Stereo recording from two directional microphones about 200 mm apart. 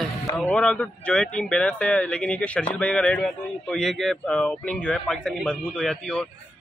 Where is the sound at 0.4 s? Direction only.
5° left (ahead or behind).